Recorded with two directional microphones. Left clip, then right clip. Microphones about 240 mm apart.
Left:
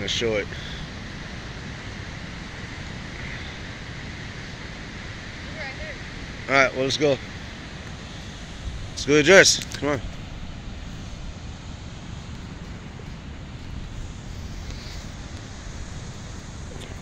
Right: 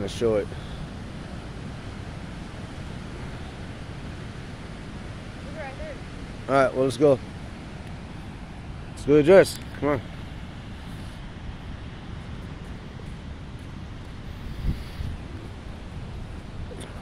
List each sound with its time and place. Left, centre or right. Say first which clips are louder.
0.0 s speech: even; right
6.5 s speech: left 1 dB; right
9.1 s speech: left 2 dB; centre